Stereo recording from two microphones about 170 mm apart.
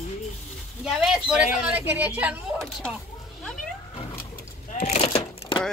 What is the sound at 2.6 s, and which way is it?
Speech, 5° left (ahead or behind).